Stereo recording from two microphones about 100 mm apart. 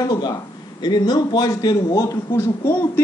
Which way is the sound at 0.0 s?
40° left (ahead or behind).